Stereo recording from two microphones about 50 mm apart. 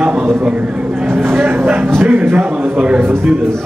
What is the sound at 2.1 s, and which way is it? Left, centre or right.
Speech, right.